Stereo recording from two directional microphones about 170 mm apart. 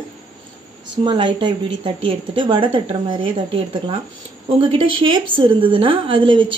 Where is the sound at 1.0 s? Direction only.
30° right (ahead or behind).